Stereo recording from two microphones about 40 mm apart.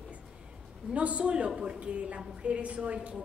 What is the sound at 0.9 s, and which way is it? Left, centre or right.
A woman's voice, right.